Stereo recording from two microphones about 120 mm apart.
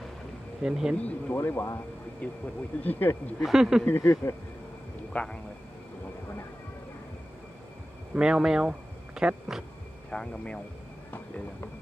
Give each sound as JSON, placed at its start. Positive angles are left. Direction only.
{"t": 0.6, "sound": "speech", "side_deg": -5}
{"t": 0.9, "sound": "speech", "side_deg": 15}
{"t": 2.2, "sound": "speech", "side_deg": 10}
{"t": 3.4, "sound": "speech", "side_deg": -5}
{"t": 3.8, "sound": "speech", "side_deg": 20}
{"t": 5.1, "sound": "speech", "side_deg": 10}
{"t": 8.1, "sound": "speech", "side_deg": -5}
{"t": 10.1, "sound": "speech", "side_deg": 10}